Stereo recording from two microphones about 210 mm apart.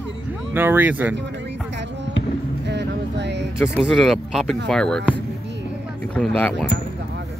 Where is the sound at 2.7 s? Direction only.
55° right (ahead or behind).